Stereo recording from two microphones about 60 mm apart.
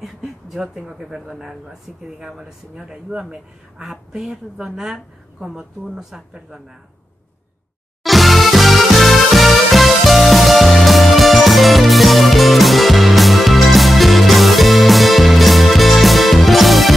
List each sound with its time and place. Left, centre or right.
0.0 s speech: centre
8.0 s music: centre